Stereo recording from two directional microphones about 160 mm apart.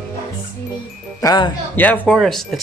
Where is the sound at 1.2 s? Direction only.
20° left (ahead or behind).